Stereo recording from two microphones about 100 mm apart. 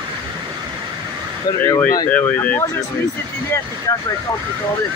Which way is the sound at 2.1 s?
15° left (ahead or behind).